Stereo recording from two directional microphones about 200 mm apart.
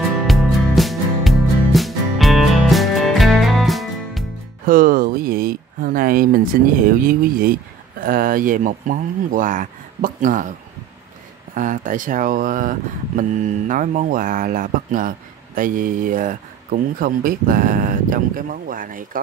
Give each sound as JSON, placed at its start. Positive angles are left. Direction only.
{"t": 0.3, "sound": "music", "side_deg": 0}
{"t": 4.6, "sound": "speech", "side_deg": -45}
{"t": 11.5, "sound": "speech", "side_deg": -40}